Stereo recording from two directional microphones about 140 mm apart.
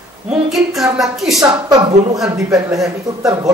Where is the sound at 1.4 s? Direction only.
25° right (ahead or behind).